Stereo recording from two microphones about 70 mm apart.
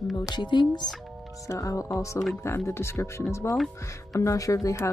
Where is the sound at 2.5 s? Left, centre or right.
Left.